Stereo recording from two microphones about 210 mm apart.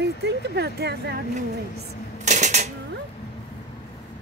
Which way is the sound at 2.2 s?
35° right (ahead or behind).